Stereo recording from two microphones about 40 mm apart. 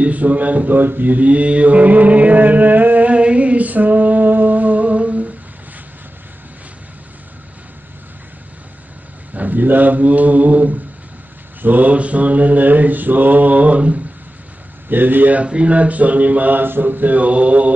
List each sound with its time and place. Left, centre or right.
0.0 s mantra: right
3.1 s a sound: right
9.3 s speech: right
11.9 s mantra: right
14.9 s speech: right
15.3 s mantra: right